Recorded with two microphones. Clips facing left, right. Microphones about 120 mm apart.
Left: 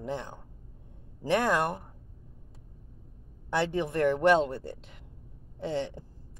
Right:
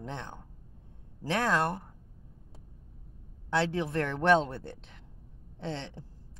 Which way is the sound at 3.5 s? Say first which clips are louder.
Left 1 dB; 15° left (ahead or behind).